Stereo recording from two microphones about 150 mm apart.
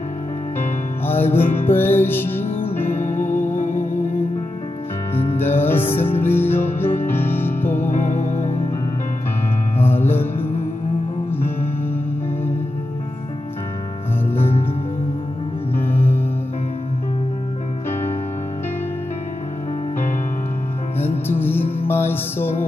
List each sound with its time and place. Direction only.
1.0 s music: 15° left (ahead or behind)
3.0 s music: 55° left (ahead or behind)
5.4 s music: 15° left (ahead or behind)
7.9 s music: 55° left (ahead or behind)
9.8 s music: 15° left (ahead or behind)
11.3 s music: 15° left (ahead or behind)
14.3 s music: 40° left (ahead or behind)
15.7 s music: 15° left (ahead or behind)
21.3 s music: 15° left (ahead or behind)